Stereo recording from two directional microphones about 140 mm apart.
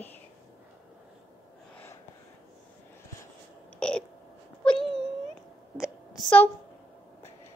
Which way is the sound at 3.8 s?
5° left (ahead or behind).